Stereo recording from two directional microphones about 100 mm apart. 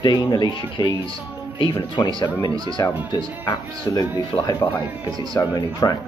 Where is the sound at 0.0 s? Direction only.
45° left (ahead or behind).